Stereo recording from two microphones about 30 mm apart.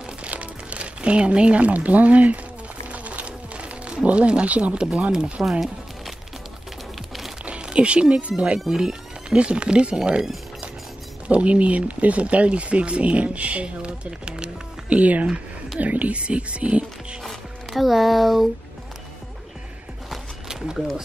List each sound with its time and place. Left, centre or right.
0.0 s a sound: right
1.6 s speech: right
2.9 s insect: right
4.0 s speech: right
7.4 s speech: right
8.6 s speech: centre
9.3 s speech: right
11.2 s speech: right
14.9 s speech: right
16.2 s speech: right
17.2 s speech: centre
20.7 s speech: centre